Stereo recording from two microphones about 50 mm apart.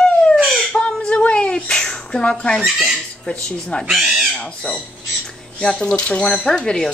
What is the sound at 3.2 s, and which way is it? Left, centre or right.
Speech, centre.